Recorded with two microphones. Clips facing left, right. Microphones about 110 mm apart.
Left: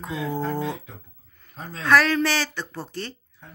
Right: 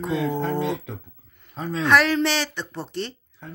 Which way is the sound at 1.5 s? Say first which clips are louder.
Right 9 dB; 90° right.